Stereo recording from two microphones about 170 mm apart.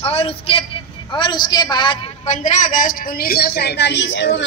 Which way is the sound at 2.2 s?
45° left (ahead or behind).